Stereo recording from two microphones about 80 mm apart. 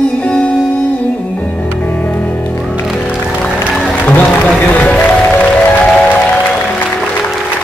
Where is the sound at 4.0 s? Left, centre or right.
Left.